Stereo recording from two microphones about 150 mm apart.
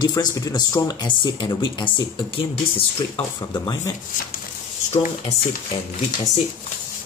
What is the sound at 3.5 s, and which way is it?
Speech, 25° left (ahead or behind).